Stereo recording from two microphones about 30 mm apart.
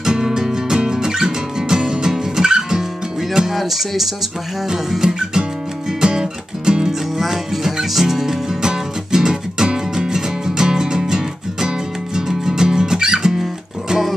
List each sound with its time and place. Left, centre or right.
0.0 s music: centre
3.5 s music: centre
4.6 s music: centre
6.9 s music: centre